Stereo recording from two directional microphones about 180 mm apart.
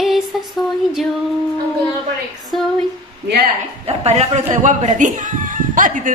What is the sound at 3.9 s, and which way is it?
A woman's voice, 35° right (ahead or behind).